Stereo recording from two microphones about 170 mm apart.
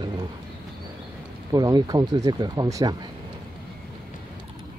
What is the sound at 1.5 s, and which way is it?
Speech, 20° right (ahead or behind).